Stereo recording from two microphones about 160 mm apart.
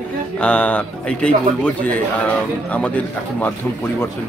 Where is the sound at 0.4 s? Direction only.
10° left (ahead or behind).